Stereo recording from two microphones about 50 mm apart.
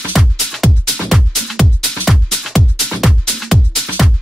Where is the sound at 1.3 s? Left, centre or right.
Centre.